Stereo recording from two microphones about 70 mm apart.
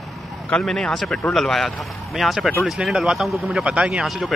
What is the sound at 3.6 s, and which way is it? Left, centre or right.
Speech, centre.